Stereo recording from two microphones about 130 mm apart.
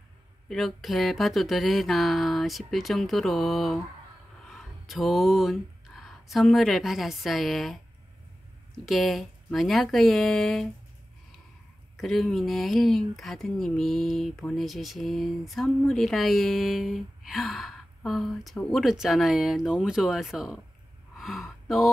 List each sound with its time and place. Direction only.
0.5 s speech: centre (ahead or behind)
4.5 s a sound: centre (ahead or behind)
8.8 s speech: centre (ahead or behind)
12.0 s speech: centre (ahead or behind)